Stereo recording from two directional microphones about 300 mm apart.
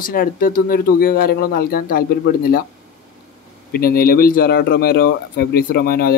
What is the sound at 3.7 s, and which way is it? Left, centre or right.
Speech, left.